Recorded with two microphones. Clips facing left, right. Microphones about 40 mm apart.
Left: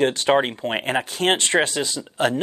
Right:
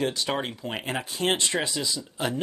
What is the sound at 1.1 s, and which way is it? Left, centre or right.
Speech, left.